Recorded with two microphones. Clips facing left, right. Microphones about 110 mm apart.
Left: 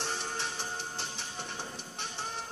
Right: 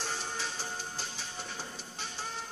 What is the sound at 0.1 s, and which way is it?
Music, 20° left (ahead or behind).